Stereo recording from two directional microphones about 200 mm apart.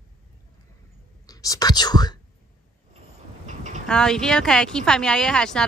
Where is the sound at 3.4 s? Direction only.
35° right (ahead or behind).